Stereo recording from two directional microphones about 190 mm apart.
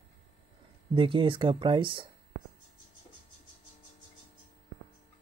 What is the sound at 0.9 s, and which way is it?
Speech, 25° right (ahead or behind).